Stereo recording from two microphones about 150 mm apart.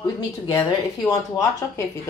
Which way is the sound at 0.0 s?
20° left (ahead or behind).